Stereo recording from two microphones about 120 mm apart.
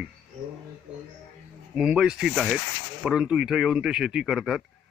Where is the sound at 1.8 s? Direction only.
5° right (ahead or behind).